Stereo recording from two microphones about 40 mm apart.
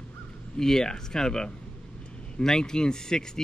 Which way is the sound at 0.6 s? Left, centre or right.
Centre.